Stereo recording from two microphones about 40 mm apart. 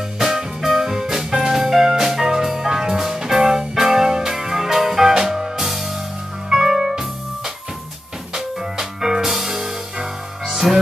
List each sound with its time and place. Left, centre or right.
0.2 s music: centre